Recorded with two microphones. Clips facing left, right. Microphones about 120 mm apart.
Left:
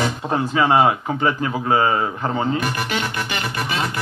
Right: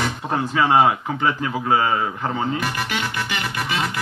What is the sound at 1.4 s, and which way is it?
A man's voice, 40° left (ahead or behind).